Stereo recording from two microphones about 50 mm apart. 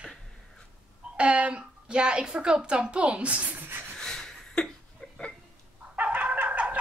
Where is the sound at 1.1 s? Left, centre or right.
Right.